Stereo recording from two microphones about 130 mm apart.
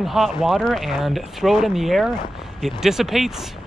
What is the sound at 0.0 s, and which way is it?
Speech, centre (ahead or behind).